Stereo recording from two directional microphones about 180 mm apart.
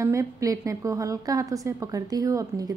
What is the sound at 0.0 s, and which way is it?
A woman's voice, 15° right (ahead or behind).